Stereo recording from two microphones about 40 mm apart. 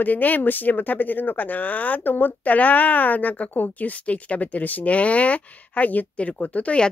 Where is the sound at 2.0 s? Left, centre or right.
Left.